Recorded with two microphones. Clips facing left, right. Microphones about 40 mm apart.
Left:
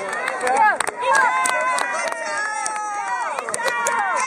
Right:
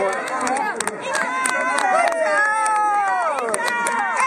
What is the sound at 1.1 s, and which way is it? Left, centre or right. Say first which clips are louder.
Speech: left 7 dB; centre.